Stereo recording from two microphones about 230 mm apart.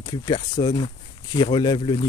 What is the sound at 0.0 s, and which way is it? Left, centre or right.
Speech, centre.